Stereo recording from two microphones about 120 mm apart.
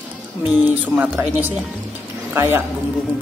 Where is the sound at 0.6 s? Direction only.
10° right (ahead or behind).